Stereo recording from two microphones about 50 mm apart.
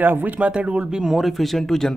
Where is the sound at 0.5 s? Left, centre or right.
Right.